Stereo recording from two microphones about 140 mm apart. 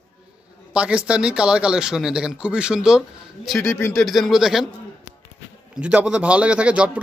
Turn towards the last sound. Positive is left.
turn(degrees=-10)  # may be behind; listen again after turning